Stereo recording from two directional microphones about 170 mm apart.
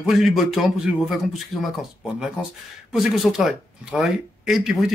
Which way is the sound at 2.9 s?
Centre (ahead or behind).